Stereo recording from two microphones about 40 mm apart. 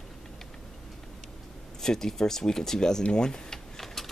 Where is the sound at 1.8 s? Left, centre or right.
Centre.